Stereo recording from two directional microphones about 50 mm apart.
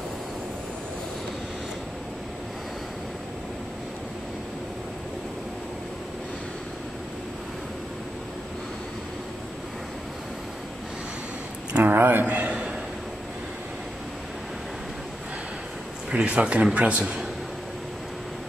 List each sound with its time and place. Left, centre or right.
11.7 s speech: right
12.3 s a sound: right
16.3 s speech: right
17.0 s a man's voice: centre